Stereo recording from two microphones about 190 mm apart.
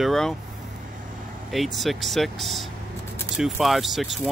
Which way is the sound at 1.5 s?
Centre (ahead or behind).